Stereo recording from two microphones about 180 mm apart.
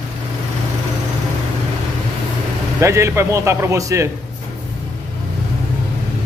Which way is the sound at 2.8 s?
15° right (ahead or behind).